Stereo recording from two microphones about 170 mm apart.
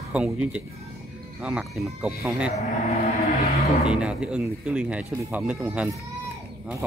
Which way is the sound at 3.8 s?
5° right (ahead or behind).